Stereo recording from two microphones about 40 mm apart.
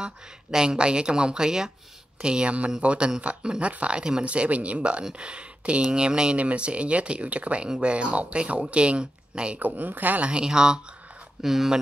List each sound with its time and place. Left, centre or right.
0.0 s speech: centre
2.2 s speech: right
4.3 s speech: right
9.6 s speech: right
10.2 s speech: right